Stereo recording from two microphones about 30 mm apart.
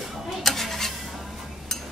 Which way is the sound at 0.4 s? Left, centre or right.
Centre.